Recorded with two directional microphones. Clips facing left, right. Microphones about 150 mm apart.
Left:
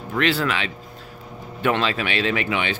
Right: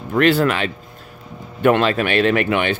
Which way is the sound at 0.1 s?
50° right (ahead or behind).